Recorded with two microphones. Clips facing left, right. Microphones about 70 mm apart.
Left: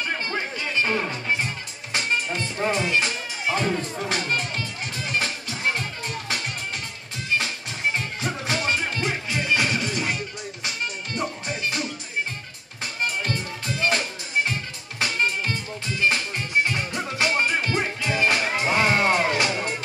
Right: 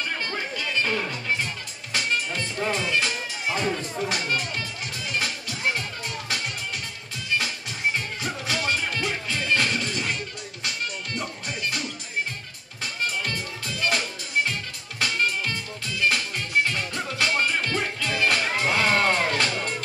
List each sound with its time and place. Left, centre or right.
0.2 s music: left
4.1 s speech: left
4.9 s music: left
8.2 s music: left
9.3 s music: centre
11.1 s music: left
13.7 s music: left